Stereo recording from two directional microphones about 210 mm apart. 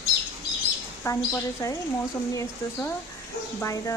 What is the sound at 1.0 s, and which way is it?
Speech, 15° left (ahead or behind).